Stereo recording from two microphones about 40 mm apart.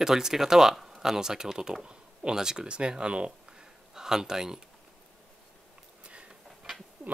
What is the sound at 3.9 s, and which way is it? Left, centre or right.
Speech, centre.